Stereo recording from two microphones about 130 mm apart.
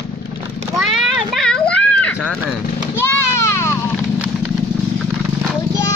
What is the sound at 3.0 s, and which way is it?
Children playing, 20° left (ahead or behind).